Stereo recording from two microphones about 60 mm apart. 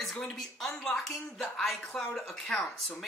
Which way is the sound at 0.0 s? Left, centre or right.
Centre.